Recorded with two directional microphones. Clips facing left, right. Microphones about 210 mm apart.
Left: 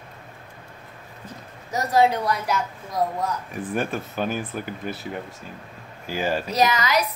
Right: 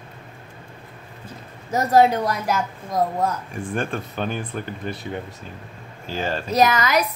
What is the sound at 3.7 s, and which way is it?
Speech, 5° left (ahead or behind).